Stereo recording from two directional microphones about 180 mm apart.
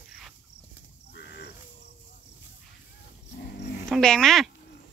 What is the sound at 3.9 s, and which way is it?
Speech, 5° left (ahead or behind).